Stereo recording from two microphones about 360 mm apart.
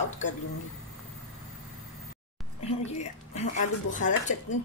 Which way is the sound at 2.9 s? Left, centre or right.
Centre.